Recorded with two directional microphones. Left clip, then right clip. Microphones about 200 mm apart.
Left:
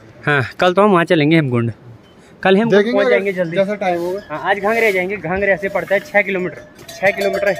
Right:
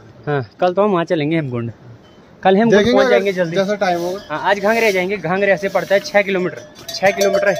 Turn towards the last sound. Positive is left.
turn(degrees=-10)  # may be behind; listen again after turning